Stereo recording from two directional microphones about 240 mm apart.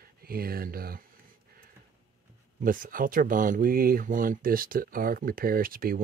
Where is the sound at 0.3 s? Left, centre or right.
Right.